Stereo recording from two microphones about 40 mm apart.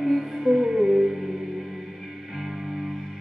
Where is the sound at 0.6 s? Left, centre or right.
Right.